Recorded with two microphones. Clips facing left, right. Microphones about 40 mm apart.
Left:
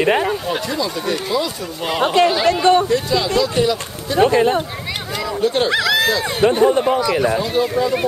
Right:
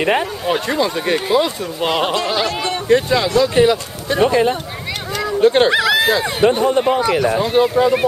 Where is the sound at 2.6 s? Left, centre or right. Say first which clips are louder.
Left 9 dB; left.